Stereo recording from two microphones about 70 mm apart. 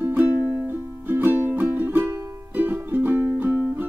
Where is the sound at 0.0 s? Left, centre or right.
Right.